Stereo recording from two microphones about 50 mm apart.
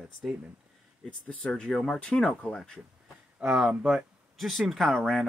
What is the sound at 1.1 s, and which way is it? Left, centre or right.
Speech, centre.